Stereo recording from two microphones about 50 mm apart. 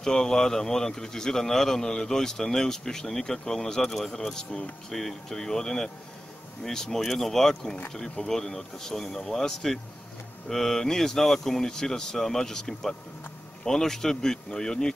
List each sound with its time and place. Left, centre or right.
0.0 s speech: centre